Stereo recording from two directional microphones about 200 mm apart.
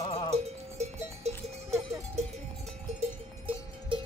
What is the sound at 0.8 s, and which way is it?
Cowbell, 35° right (ahead or behind).